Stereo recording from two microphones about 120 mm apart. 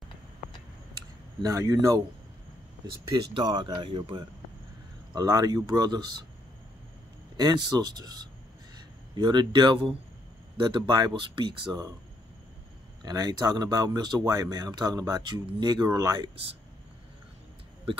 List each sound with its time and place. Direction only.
1.4 s speech: 25° right (ahead or behind)
3.1 s speech: 35° right (ahead or behind)
5.1 s speech: 30° right (ahead or behind)
7.3 s speech: 35° right (ahead or behind)
13.0 s speech: 35° right (ahead or behind)